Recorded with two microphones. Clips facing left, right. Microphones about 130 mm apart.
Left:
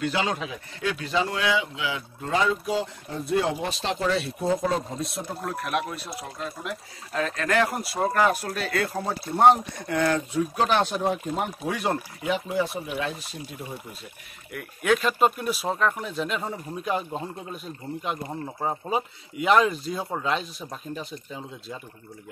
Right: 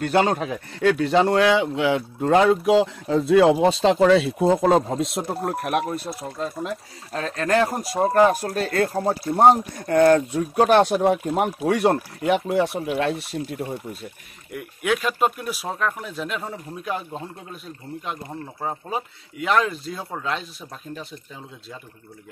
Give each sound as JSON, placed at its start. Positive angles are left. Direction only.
{"t": 0.0, "sound": "speech", "side_deg": -50}
{"t": 5.4, "sound": "speech", "side_deg": -50}
{"t": 6.3, "sound": "speech", "side_deg": -35}
{"t": 11.0, "sound": "speech", "side_deg": -60}
{"t": 14.8, "sound": "speech", "side_deg": -5}